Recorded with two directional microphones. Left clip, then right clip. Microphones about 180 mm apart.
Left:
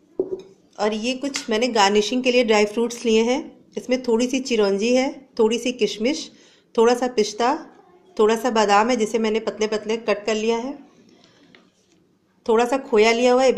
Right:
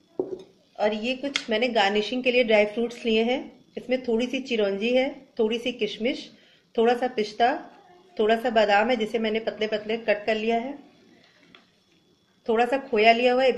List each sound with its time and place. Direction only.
0.7 s speech: 65° left (ahead or behind)
12.4 s speech: 60° left (ahead or behind)